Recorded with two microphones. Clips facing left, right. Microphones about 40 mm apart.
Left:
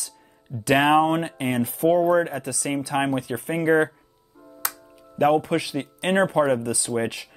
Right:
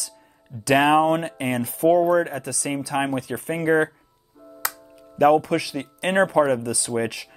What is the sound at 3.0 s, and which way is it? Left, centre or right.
Speech, left.